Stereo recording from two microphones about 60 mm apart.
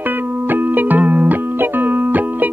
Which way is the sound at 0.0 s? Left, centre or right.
Right.